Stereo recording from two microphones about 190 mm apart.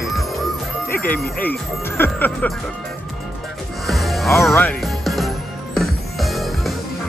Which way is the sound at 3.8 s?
Centre (ahead or behind).